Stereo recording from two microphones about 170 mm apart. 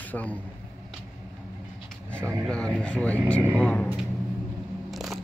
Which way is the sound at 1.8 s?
5° left (ahead or behind).